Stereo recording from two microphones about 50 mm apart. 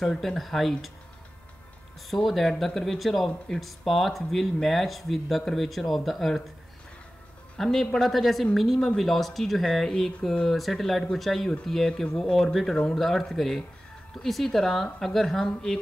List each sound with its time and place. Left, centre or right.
0.0 s speech: centre
2.0 s speech: centre
7.5 s speech: centre